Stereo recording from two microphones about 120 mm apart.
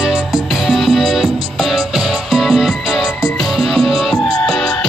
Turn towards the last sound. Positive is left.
turn(degrees=5)  # may be behind; listen again after turning